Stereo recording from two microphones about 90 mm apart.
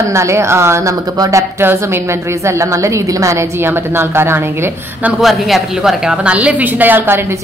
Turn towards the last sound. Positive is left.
turn(degrees=-25)  # may be behind; listen again after turning